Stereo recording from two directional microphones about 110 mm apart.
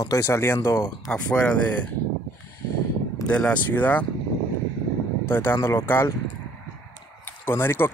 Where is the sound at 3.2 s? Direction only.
10° left (ahead or behind).